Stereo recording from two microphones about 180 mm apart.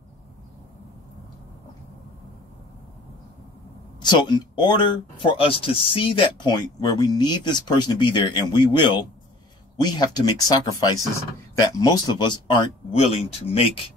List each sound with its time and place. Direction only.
4.0 s speech: 25° left (ahead or behind)